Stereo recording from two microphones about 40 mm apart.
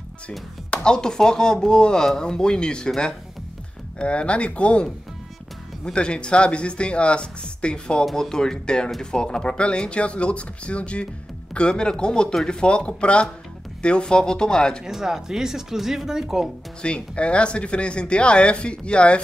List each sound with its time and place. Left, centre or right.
0.7 s speech: centre
4.0 s speech: left
5.9 s speech: left
14.9 s speech: centre
16.8 s speech: left